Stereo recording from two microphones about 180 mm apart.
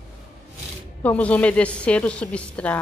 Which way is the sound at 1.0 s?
10° left (ahead or behind).